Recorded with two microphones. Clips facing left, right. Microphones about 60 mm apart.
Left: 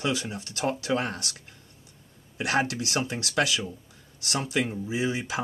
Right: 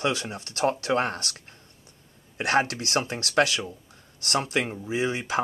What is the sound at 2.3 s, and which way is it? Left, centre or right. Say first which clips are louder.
Speech: right 2 dB; right.